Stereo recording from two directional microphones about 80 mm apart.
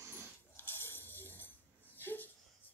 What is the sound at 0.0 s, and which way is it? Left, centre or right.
Dog, right.